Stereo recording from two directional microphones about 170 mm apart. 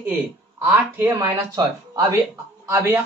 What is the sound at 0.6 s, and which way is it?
Speech, 15° right (ahead or behind).